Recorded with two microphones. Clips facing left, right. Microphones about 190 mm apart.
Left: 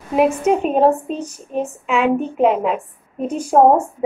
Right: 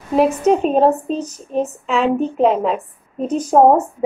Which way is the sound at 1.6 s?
35° right (ahead or behind).